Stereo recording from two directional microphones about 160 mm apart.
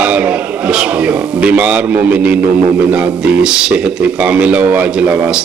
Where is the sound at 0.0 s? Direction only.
10° right (ahead or behind).